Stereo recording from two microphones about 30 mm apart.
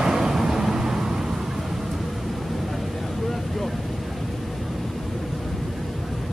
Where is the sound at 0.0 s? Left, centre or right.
Centre.